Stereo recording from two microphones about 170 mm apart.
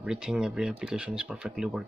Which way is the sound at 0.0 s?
5° right (ahead or behind).